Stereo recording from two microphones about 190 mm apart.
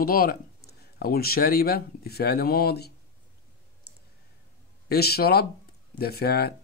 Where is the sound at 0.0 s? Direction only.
50° left (ahead or behind).